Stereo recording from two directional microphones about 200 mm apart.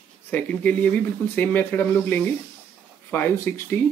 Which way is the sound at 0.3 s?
5° left (ahead or behind).